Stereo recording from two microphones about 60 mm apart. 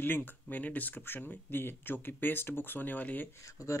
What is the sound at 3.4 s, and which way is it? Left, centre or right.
Speech, left.